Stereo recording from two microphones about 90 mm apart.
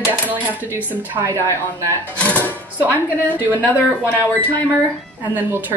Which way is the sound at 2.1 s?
15° left (ahead or behind).